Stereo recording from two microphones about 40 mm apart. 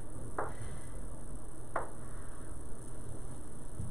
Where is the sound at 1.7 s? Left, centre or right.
Centre.